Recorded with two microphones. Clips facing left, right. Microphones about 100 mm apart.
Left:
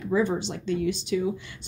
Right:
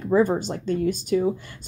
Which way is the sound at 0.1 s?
45° right (ahead or behind).